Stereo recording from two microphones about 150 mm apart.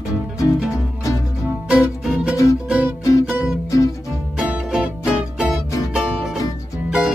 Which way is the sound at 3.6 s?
20° left (ahead or behind).